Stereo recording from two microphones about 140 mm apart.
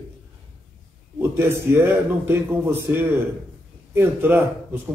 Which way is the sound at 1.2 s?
15° right (ahead or behind).